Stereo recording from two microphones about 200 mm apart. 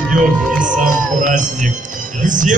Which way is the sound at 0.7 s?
40° right (ahead or behind).